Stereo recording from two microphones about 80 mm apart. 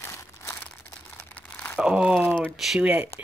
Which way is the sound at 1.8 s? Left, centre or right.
Centre.